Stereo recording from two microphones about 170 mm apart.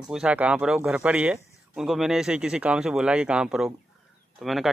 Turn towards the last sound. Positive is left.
turn(degrees=0)  # may be behind; listen again after turning